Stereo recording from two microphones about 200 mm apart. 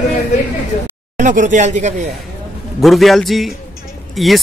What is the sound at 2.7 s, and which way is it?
Speech, centre (ahead or behind).